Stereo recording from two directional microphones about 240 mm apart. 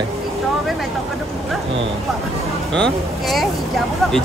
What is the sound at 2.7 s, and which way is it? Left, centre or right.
Speech, centre.